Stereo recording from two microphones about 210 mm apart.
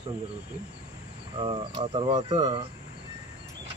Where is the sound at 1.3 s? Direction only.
25° right (ahead or behind).